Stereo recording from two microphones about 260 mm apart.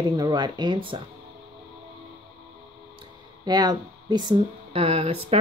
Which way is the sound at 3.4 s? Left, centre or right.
Centre.